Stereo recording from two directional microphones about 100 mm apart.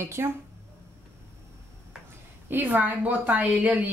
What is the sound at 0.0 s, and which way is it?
Speech, 25° right (ahead or behind).